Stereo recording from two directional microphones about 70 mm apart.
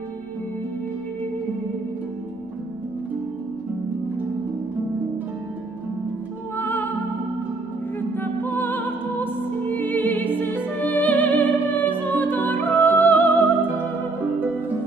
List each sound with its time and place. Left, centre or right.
6.5 s music: left
8.2 s music: left